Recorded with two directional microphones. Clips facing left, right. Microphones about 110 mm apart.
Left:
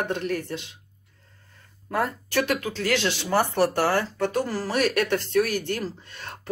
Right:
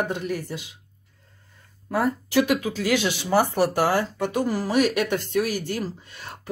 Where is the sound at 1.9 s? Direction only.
5° right (ahead or behind).